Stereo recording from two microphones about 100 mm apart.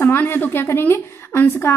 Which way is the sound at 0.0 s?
20° left (ahead or behind).